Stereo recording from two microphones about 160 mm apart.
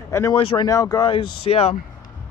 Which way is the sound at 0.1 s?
15° left (ahead or behind).